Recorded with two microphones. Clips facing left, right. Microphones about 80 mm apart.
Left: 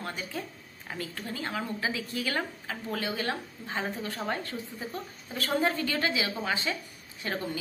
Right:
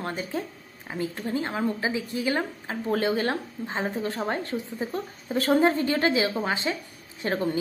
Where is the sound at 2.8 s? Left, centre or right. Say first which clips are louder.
Right 8 dB; right.